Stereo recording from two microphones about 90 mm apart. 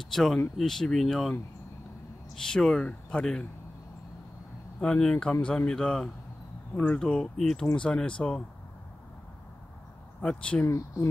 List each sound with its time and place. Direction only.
0.0 s speech: 5° left (ahead or behind)
2.3 s speech: 5° left (ahead or behind)
4.7 s speech: 10° left (ahead or behind)
10.2 s speech: 10° left (ahead or behind)
10.6 s speech: 35° left (ahead or behind)